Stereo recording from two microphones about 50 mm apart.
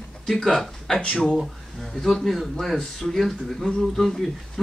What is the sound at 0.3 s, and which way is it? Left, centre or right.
Speech, centre.